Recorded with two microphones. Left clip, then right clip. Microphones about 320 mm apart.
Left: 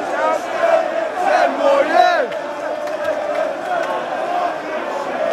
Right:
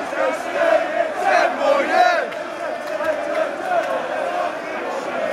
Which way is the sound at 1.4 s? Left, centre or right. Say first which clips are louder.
Left 4 dB; left.